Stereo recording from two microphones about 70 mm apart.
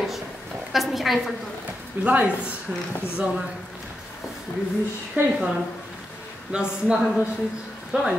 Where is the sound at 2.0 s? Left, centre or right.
Centre.